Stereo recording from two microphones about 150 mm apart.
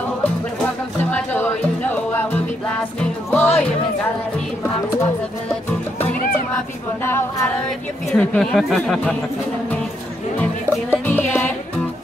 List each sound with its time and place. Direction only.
1.1 s music: 10° left (ahead or behind)
4.6 s music: 15° left (ahead or behind)
7.1 s a capella: 15° left (ahead or behind)
8.1 s speech: 5° left (ahead or behind)
10.4 s music: 15° left (ahead or behind)